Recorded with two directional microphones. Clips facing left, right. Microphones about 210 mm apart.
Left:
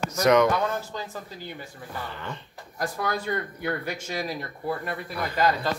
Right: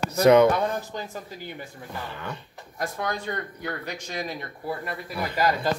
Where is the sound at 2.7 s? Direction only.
5° left (ahead or behind).